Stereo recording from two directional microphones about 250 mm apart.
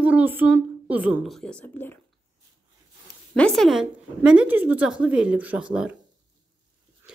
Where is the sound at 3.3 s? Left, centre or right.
Centre.